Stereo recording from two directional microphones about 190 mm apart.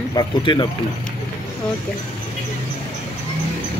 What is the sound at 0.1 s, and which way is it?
Speech, 20° left (ahead or behind).